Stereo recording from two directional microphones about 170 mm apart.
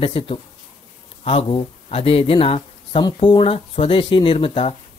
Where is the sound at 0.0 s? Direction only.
35° left (ahead or behind).